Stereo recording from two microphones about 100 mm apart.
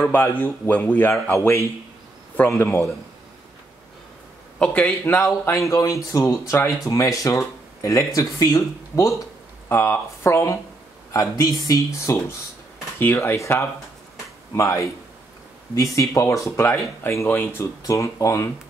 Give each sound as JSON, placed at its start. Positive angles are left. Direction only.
{"t": 0.1, "sound": "speech", "side_deg": 15}
{"t": 2.5, "sound": "speech", "side_deg": 25}
{"t": 4.6, "sound": "speech", "side_deg": 15}